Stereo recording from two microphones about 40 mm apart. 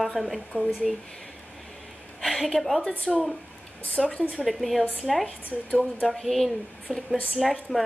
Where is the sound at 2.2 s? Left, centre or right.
Centre.